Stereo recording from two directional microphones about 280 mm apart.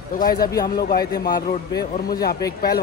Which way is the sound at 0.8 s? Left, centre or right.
Left.